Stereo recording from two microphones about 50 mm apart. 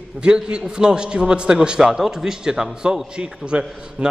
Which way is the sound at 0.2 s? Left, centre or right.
Centre.